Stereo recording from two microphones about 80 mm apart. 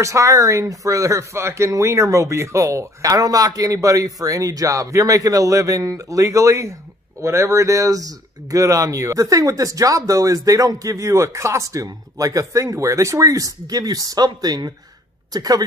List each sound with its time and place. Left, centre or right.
0.0 s speech: right